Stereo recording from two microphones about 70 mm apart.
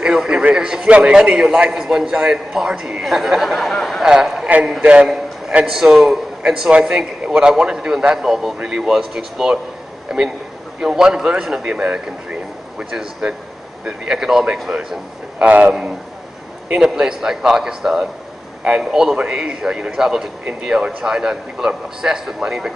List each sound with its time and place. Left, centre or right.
0.0 s a man's voice: centre
6.0 s a man's voice: centre